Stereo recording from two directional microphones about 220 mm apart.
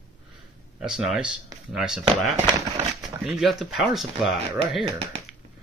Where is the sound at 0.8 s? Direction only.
5° right (ahead or behind).